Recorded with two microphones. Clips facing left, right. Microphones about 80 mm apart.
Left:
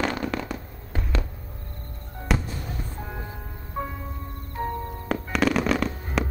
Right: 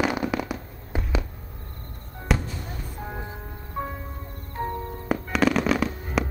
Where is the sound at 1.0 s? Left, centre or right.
Centre.